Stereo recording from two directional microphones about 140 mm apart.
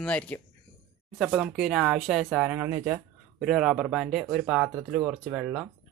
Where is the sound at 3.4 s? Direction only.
5° right (ahead or behind).